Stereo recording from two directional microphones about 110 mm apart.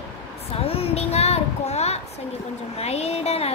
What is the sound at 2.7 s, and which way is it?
Speech, 70° left (ahead or behind).